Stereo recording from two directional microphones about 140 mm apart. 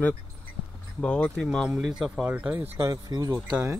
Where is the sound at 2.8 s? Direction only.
25° right (ahead or behind).